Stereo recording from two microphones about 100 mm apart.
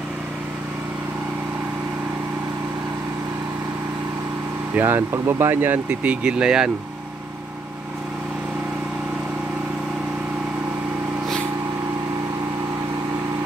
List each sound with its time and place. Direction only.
4.7 s speech: 20° right (ahead or behind)